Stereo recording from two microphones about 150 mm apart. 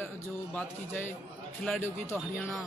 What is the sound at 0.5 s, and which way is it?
Speech, 15° left (ahead or behind).